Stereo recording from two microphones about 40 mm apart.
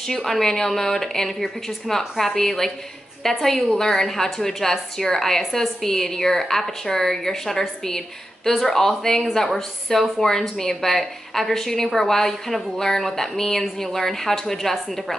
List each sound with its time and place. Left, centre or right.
0.0 s a woman's voice: centre